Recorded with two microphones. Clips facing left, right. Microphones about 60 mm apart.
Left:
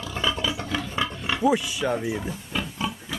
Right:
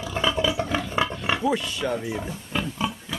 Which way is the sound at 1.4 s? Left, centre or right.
Centre.